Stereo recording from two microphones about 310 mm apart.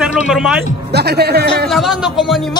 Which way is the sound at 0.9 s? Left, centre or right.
Right.